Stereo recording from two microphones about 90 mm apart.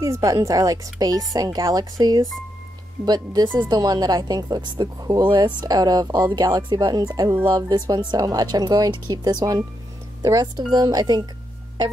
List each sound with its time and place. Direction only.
0.0 s a woman's voice: 35° right (ahead or behind)